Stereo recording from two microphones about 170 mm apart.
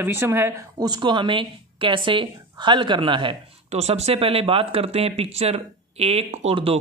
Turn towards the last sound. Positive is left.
turn(degrees=-35)  # may be behind; listen again after turning